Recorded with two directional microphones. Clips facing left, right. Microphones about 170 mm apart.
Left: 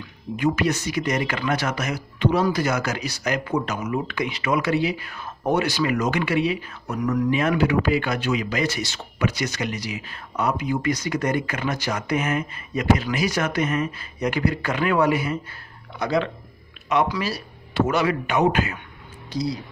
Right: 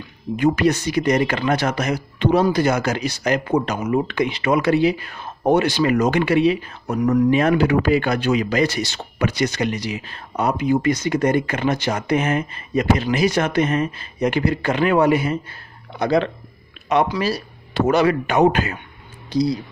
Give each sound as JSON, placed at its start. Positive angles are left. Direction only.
{"t": 0.4, "sound": "speech", "side_deg": -35}